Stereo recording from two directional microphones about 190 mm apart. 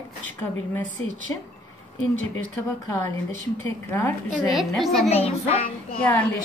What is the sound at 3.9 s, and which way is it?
Speech, 10° left (ahead or behind).